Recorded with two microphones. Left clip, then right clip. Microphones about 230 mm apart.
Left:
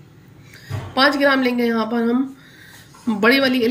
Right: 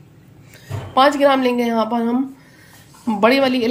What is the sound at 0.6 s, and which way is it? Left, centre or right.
A woman's voice, centre.